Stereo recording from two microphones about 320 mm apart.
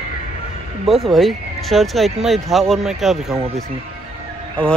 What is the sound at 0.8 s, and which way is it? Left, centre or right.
Speech, centre.